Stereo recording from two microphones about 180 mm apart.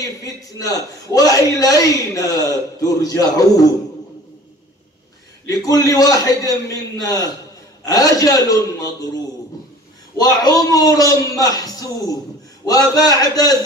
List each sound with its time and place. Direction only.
0.0 s a man's voice: 20° left (ahead or behind)
5.5 s a man's voice: 20° left (ahead or behind)
10.1 s a man's voice: 20° left (ahead or behind)